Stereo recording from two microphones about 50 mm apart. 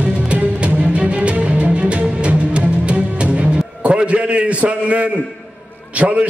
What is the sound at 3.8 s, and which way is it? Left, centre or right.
A man's voice, right.